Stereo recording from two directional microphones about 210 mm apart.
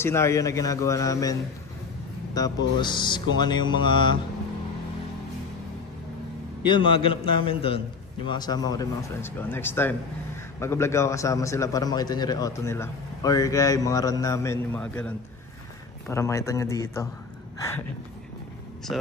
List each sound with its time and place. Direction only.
0.0 s a man's voice: 10° left (ahead or behind)
2.4 s a man's voice: 15° left (ahead or behind)
2.8 s music: 20° left (ahead or behind)
6.6 s a man's voice: 20° left (ahead or behind)